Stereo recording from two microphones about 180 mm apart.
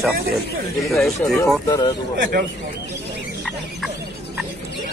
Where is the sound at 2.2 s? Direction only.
55° right (ahead or behind).